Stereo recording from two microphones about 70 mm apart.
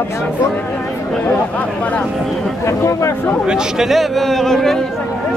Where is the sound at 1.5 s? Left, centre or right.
Centre.